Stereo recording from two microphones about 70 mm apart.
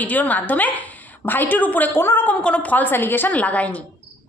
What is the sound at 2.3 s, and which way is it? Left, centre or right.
A woman's voice, centre.